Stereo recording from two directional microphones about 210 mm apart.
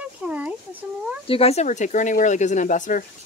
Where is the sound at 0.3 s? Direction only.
5° right (ahead or behind).